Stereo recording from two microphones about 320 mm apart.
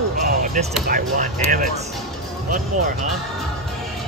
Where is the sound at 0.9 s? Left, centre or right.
Right.